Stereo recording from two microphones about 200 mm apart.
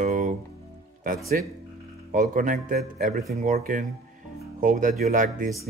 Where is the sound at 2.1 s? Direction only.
40° right (ahead or behind).